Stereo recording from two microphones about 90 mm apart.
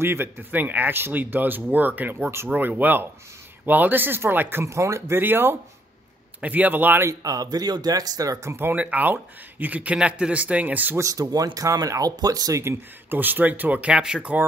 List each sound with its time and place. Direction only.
0.0 s speech: 25° right (ahead or behind)
7.1 s speech: 45° right (ahead or behind); by 11.0 s 20° right (ahead or behind)
11.0 s speech: 40° right (ahead or behind)
12.6 s speech: 25° right (ahead or behind)